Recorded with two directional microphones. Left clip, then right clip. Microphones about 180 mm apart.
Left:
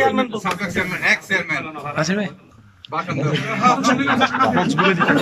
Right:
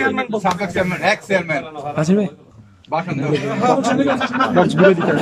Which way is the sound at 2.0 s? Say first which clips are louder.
Right 3 dB; 15° right (ahead or behind).